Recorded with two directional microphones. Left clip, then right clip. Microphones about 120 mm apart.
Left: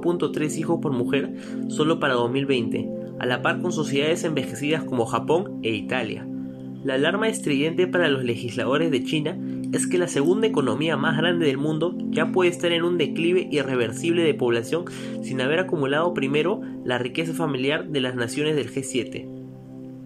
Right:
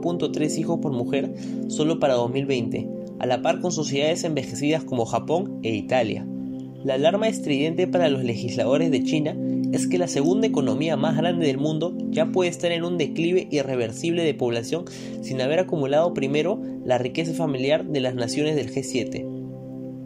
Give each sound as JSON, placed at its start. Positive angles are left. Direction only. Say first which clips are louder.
{"t": 0.0, "sound": "speech", "louder": "left 1 dB", "side_deg": -20}